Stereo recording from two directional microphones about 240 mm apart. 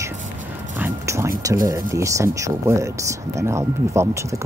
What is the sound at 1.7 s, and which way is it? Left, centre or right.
Speech, centre.